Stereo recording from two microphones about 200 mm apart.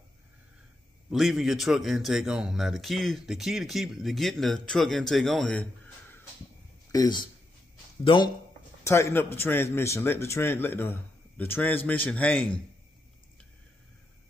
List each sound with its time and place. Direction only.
1.1 s speech: centre (ahead or behind)
6.9 s speech: 20° left (ahead or behind)
8.8 s a man's voice: 15° left (ahead or behind)